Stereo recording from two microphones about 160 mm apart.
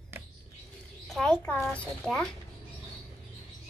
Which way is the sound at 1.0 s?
5° left (ahead or behind).